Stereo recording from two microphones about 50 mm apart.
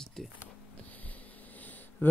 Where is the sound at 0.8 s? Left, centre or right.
Left.